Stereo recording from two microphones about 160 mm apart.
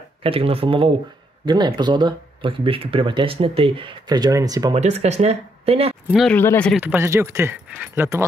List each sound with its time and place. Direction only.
0.2 s speech: 35° right (ahead or behind)
4.7 s speech: 45° right (ahead or behind)
6.0 s speech: centre (ahead or behind)
6.3 s speech: 10° left (ahead or behind)
6.8 s speech: 15° right (ahead or behind)